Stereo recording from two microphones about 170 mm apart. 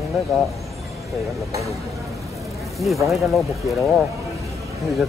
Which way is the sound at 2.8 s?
Centre (ahead or behind).